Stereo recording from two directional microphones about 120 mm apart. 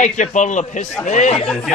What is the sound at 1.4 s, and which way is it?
Speech, 5° left (ahead or behind).